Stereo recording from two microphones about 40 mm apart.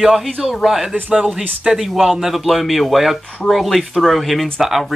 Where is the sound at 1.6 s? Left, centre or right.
Centre.